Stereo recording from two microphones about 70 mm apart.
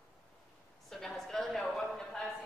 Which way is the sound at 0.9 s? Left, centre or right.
Centre.